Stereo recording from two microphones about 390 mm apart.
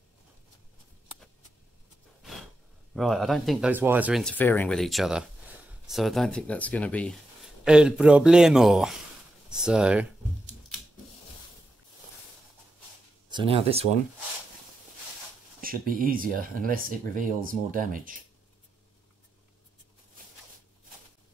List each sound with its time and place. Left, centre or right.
2.9 s speech: centre
9.5 s computer keyboard: centre
13.3 s speech: centre
15.6 s speech: right